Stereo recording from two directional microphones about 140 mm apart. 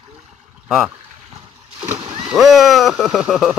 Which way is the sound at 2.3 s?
Centre (ahead or behind).